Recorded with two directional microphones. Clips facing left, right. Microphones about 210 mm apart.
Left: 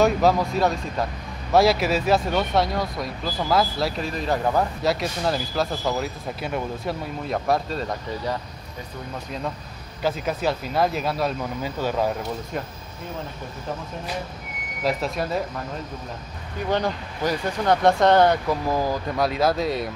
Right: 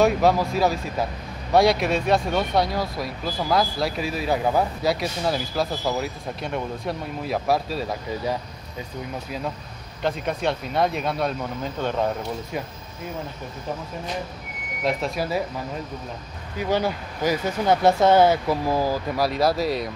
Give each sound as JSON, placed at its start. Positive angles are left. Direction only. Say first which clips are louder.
{"t": 0.0, "sound": "speech", "louder": "even", "side_deg": 0}
{"t": 10.0, "sound": "speech", "louder": "even", "side_deg": 5}
{"t": 14.8, "sound": "speech", "louder": "even", "side_deg": 0}
{"t": 16.5, "sound": "speech", "louder": "right 1 dB", "side_deg": -5}